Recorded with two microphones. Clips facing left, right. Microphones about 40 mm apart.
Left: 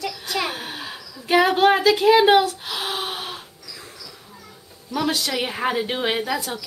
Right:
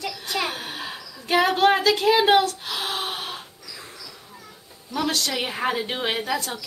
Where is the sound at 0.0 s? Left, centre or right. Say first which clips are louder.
Left 1 dB; centre.